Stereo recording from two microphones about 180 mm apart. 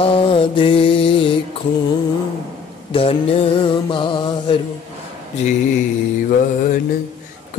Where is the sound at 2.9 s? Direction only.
30° left (ahead or behind).